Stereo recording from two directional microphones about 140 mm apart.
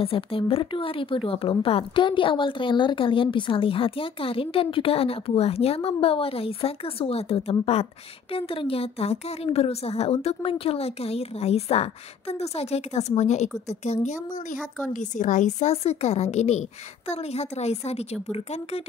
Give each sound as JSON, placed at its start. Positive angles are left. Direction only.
{"t": 0.0, "sound": "a woman's voice", "side_deg": 40}